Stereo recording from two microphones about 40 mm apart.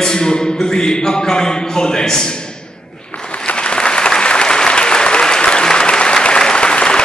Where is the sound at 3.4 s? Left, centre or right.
Left.